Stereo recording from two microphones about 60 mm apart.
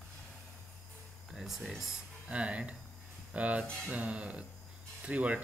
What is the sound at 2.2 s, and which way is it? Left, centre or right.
Speech, right.